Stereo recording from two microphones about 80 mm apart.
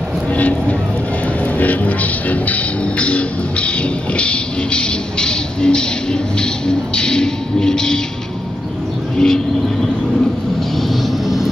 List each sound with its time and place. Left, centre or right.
0.3 s vehicle: centre
1.6 s music: centre
9.2 s vehicle: centre